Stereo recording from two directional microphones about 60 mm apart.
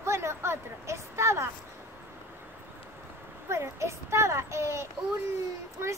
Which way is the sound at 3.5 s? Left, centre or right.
Right.